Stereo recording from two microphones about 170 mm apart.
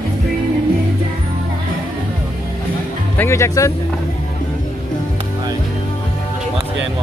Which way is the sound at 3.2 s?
15° left (ahead or behind).